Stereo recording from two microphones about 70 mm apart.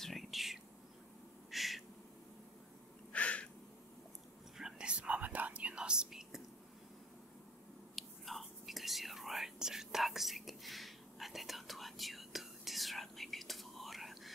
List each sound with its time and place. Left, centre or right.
0.0 s whispering: centre
1.5 s owl: centre
3.1 s a sound: centre
4.6 s whispering: centre
7.9 s whispering: centre